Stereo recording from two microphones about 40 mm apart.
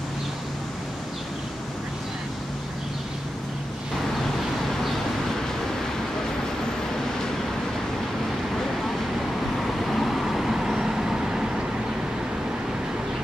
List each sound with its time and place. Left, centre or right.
9.6 s vehicle: centre